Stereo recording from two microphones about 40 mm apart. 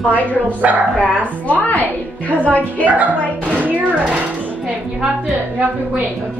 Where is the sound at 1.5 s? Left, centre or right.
Left.